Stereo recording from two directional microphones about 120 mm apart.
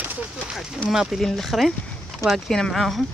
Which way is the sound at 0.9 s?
Centre (ahead or behind).